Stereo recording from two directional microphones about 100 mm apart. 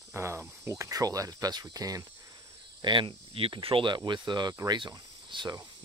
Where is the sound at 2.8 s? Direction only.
50° right (ahead or behind).